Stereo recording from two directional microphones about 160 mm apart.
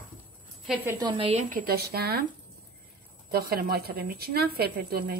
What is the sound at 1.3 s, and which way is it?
Speech, 55° right (ahead or behind).